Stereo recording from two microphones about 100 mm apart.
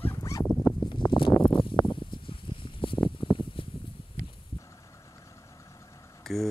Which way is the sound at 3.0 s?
30° left (ahead or behind).